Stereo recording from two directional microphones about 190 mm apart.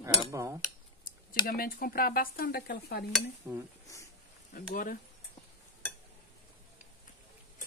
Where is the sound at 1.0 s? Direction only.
50° left (ahead or behind).